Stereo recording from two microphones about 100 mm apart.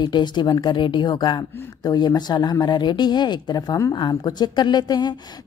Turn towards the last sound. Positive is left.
turn(degrees=45)  # may be behind; listen again after turning